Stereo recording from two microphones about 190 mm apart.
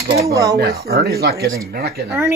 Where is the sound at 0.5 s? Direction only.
55° right (ahead or behind).